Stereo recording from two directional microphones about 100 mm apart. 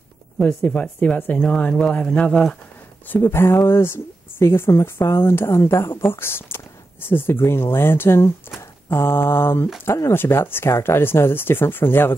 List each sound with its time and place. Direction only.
0.4 s speech: 10° left (ahead or behind)
3.1 s speech: 25° left (ahead or behind)